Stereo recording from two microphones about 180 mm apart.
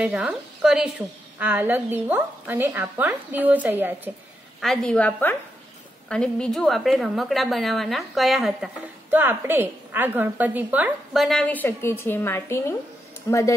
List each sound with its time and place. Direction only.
0.0 s a woman's voice: 5° right (ahead or behind)
4.6 s a woman's voice: 5° left (ahead or behind)